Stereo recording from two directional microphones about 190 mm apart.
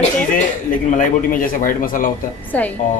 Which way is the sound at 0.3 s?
45° left (ahead or behind).